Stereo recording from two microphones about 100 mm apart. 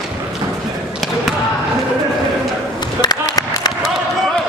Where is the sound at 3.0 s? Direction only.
40° left (ahead or behind).